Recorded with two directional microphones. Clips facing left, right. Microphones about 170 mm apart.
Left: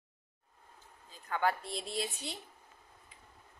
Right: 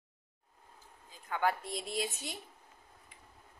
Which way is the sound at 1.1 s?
10° right (ahead or behind).